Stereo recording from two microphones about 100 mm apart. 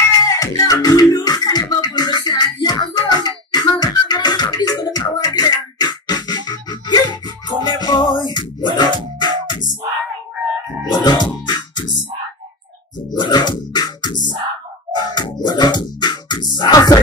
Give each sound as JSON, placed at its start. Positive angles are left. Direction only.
{"t": 0.4, "sound": "music", "side_deg": 40}
{"t": 10.9, "sound": "music", "side_deg": 45}
{"t": 13.1, "sound": "music", "side_deg": 45}